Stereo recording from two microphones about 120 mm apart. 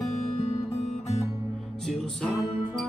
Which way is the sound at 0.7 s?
65° left (ahead or behind).